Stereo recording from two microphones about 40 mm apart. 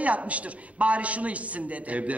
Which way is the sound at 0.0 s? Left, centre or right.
Right.